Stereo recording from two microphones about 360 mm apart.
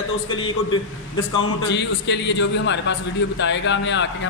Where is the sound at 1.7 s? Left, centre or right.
Left.